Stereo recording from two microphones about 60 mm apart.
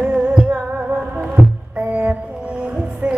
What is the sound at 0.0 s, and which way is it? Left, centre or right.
Music, right.